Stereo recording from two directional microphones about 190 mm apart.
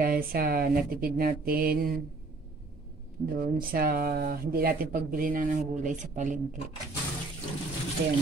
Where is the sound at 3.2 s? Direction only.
50° right (ahead or behind).